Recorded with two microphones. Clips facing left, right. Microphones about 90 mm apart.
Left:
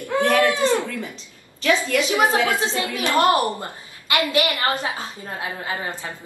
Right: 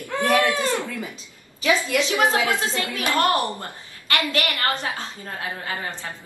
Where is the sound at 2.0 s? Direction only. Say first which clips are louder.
Left 1 dB; 15° left (ahead or behind).